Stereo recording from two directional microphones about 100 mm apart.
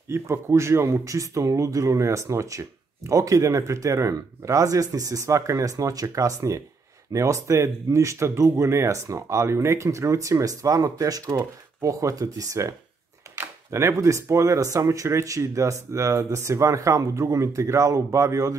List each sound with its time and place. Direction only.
0.1 s speech: 25° right (ahead or behind)